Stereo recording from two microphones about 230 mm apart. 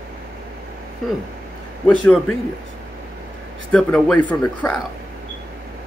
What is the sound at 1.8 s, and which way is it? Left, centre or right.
Speech, centre.